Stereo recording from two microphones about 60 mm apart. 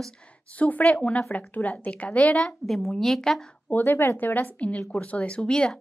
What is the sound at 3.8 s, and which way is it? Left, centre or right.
A woman's voice, left.